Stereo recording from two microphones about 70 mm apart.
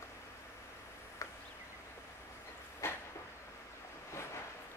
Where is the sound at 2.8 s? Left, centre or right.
Left.